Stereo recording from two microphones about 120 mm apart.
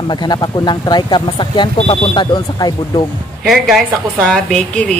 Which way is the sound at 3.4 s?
Centre (ahead or behind).